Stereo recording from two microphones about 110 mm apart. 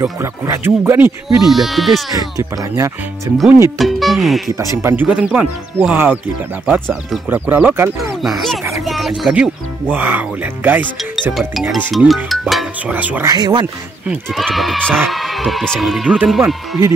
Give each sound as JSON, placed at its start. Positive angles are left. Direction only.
{"t": 0.0, "sound": "speech", "side_deg": -25}
{"t": 1.5, "sound": "speech", "side_deg": 0}
{"t": 2.1, "sound": "speech", "side_deg": -35}
{"t": 3.7, "sound": "speech", "side_deg": 0}
{"t": 4.8, "sound": "speech", "side_deg": -15}
{"t": 7.2, "sound": "speech", "side_deg": -15}
{"t": 8.2, "sound": "speech", "side_deg": 0}
{"t": 8.8, "sound": "music", "side_deg": 0}
{"t": 9.2, "sound": "speech", "side_deg": -10}
{"t": 11.3, "sound": "speech", "side_deg": 0}
{"t": 12.8, "sound": "speech", "side_deg": -15}
{"t": 13.3, "sound": "speech", "side_deg": -40}
{"t": 14.3, "sound": "speech", "side_deg": 0}